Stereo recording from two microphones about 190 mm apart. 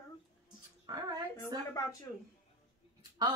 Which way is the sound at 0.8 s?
20° right (ahead or behind).